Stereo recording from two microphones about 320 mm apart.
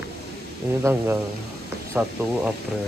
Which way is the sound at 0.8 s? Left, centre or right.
Centre.